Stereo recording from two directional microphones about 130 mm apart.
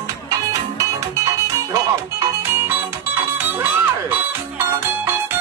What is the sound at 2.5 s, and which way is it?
Music, 15° right (ahead or behind).